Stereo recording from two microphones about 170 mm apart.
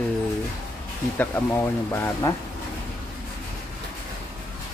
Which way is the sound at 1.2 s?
15° left (ahead or behind).